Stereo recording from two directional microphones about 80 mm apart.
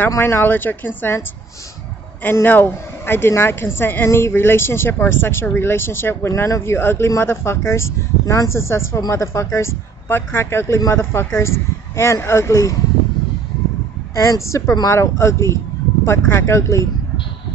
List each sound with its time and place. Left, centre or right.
0.2 s speech: left
2.2 s a woman's voice: left
14.1 s a woman's voice: left